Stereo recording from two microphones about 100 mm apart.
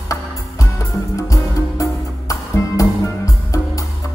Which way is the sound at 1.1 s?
35° left (ahead or behind).